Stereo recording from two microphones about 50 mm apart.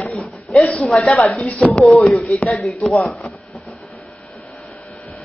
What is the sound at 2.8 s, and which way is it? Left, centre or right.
Speech, centre.